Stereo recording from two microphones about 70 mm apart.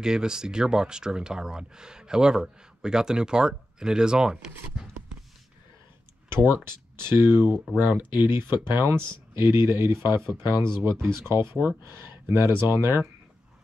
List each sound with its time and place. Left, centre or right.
0.0 s speech: centre
6.2 s speech: right